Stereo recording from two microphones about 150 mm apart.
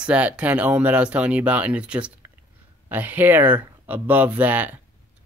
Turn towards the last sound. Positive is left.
turn(degrees=-10)  # may be behind; listen again after turning